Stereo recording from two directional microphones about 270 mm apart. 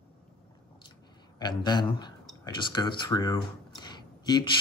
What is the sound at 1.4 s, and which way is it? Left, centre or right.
Speech, centre.